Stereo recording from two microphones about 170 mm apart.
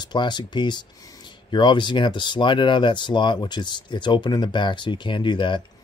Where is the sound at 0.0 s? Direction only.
25° left (ahead or behind).